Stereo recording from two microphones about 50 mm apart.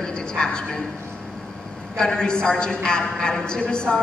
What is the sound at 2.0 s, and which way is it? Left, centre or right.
A woman's voice, centre.